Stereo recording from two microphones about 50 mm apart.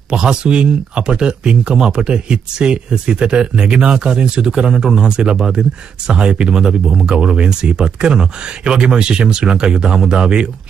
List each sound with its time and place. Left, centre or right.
0.1 s speech: centre